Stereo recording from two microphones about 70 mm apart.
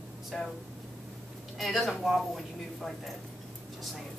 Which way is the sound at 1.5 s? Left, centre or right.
Centre.